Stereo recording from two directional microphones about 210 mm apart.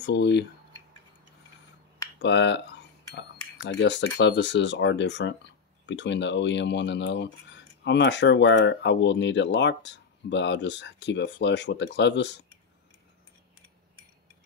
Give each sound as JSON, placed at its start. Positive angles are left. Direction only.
{"t": 0.0, "sound": "speech", "side_deg": 55}
{"t": 2.2, "sound": "speech", "side_deg": 55}